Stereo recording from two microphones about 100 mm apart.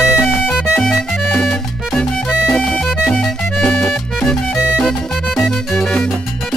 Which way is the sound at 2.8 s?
5° right (ahead or behind).